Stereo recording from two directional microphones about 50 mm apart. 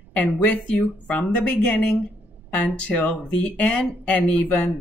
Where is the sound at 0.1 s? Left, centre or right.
Left.